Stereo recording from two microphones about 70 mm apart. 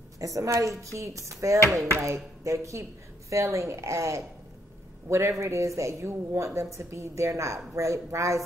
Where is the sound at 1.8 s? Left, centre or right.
Right.